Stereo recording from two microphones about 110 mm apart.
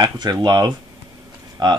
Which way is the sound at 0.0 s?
35° right (ahead or behind).